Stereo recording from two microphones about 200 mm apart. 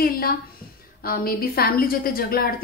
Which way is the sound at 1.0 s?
50° left (ahead or behind).